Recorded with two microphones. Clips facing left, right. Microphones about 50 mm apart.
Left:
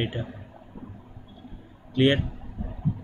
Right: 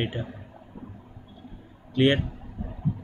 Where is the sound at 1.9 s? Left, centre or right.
Right.